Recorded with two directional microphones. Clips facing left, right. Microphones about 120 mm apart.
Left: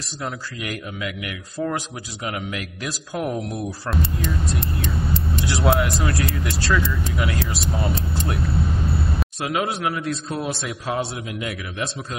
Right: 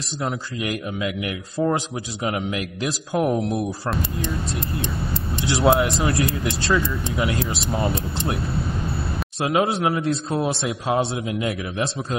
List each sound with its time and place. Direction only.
0.2 s a man's voice: 25° right (ahead or behind)
5.5 s a man's voice: 20° right (ahead or behind)
9.4 s a man's voice: 25° right (ahead or behind)